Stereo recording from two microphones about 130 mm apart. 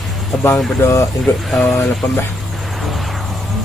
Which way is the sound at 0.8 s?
20° left (ahead or behind).